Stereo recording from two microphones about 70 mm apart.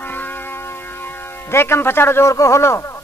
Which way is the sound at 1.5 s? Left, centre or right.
Left.